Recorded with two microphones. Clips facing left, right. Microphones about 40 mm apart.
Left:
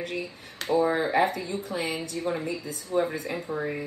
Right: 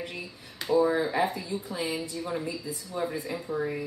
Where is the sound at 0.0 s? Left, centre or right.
Left.